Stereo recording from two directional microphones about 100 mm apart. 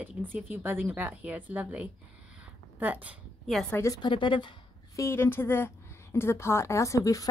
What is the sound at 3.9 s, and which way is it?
Speech, 55° left (ahead or behind).